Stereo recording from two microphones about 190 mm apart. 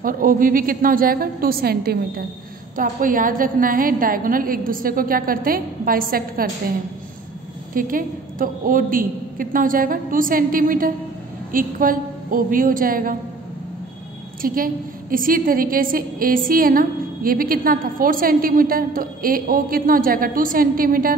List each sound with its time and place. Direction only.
0.0 s a woman's voice: 45° right (ahead or behind)
7.7 s a woman's voice: 45° right (ahead or behind)
14.4 s a woman's voice: 50° right (ahead or behind)